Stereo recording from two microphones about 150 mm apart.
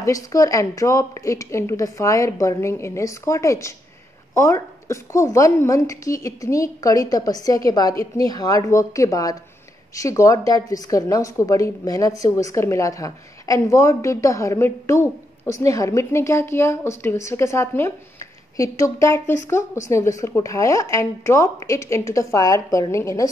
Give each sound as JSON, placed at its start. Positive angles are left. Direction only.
{"t": 0.0, "sound": "a woman's voice", "side_deg": 20}